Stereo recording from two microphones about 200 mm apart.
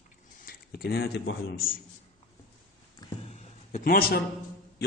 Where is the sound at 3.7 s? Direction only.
45° left (ahead or behind).